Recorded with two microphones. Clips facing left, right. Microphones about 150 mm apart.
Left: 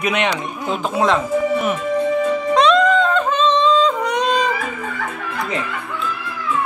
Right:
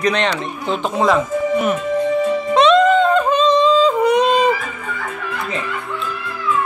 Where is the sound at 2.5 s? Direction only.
Centre (ahead or behind).